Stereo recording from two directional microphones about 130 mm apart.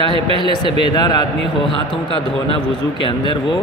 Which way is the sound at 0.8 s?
35° left (ahead or behind).